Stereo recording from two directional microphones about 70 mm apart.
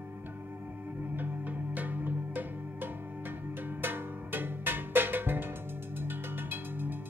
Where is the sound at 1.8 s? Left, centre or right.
Right.